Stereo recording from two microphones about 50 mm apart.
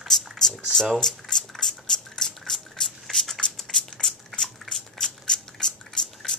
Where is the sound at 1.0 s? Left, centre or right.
Centre.